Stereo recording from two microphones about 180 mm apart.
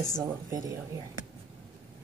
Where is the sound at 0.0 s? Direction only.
20° right (ahead or behind).